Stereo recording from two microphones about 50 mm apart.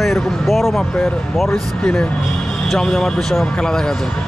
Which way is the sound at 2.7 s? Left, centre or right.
Centre.